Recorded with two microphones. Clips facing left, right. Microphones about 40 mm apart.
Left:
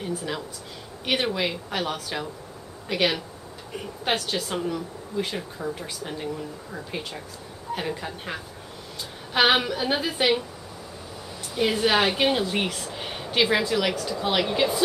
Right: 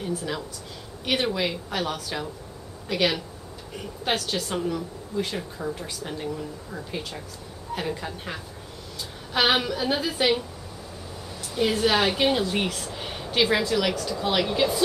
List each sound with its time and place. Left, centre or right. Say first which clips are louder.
0.0 s speech: even; centre
11.5 s speech: even; centre